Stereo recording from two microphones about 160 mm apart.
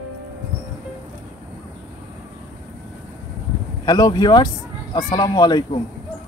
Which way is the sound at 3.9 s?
25° left (ahead or behind).